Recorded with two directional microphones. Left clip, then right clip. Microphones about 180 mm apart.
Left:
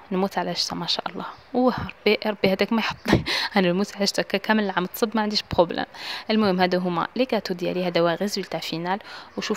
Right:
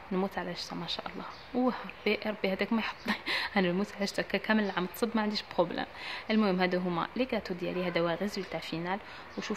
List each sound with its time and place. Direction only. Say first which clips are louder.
0.1 s speech: left 9 dB; 55° left (ahead or behind)